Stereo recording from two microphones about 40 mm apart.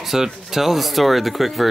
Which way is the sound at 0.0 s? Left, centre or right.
Centre.